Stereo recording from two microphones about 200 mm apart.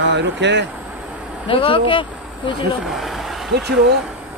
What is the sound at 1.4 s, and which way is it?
Speech, 25° left (ahead or behind).